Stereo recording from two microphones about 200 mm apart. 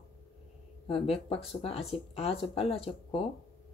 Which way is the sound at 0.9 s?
30° left (ahead or behind).